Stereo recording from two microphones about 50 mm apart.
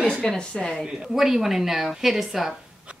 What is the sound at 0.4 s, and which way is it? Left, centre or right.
Speech, centre.